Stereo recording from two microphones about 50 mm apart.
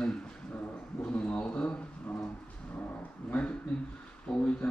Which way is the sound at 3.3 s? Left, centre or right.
Left.